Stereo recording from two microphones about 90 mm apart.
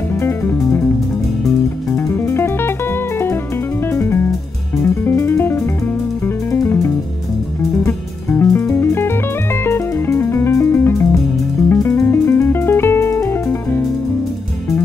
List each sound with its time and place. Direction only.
0.1 s music: 25° left (ahead or behind)
1.9 s music: 30° left (ahead or behind)